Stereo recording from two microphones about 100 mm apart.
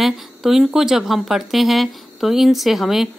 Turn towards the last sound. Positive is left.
turn(degrees=0)  # may be behind; listen again after turning